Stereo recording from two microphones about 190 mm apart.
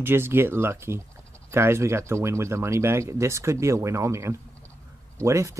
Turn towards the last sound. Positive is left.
turn(degrees=-15)  # may be behind; listen again after turning